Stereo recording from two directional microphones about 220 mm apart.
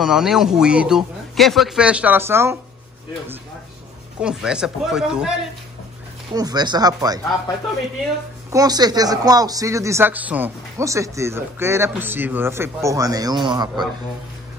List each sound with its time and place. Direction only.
0.0 s speech: centre (ahead or behind)
4.2 s speech: 5° right (ahead or behind)
6.3 s speech: 15° right (ahead or behind)
8.5 s speech: 15° right (ahead or behind)